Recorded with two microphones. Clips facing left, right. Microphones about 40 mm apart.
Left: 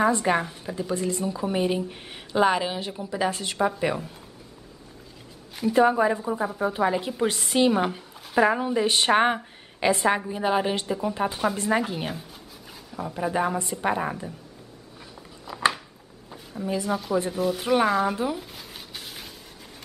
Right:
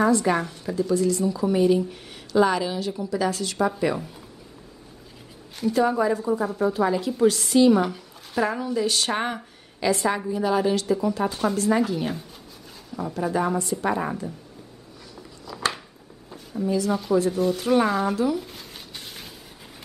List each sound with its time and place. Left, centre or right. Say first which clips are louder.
0.0 s a woman's voice: right 1 dB; left
5.7 s a woman's voice: left 1 dB; left
13.1 s a woman's voice: right 1 dB; left
15.5 s a sound: left 1 dB; left
16.6 s a woman's voice: right 4 dB; left
16.9 s speech: right 2 dB; centre
18.1 s a woman's voice: right 4 dB; left
18.4 s a sound: right 1 dB; centre